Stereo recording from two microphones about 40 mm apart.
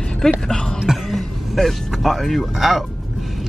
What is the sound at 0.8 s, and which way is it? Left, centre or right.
Cough, centre.